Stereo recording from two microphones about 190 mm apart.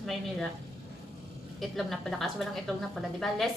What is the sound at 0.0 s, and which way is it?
Speech, centre (ahead or behind).